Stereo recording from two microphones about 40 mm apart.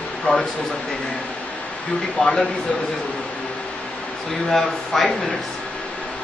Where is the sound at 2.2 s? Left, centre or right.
Centre.